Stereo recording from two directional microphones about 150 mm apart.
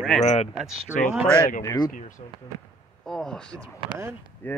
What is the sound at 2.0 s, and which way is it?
Speech, 60° left (ahead or behind).